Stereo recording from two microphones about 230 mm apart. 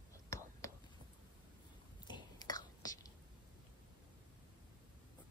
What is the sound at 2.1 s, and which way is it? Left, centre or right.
Whispering, centre.